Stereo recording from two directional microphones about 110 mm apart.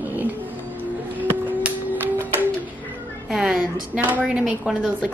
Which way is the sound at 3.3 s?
10° right (ahead or behind).